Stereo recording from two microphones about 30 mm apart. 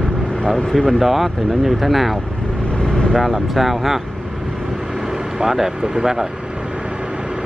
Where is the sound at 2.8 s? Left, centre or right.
Left.